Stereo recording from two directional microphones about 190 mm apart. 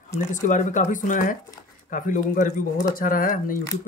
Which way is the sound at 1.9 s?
45° left (ahead or behind).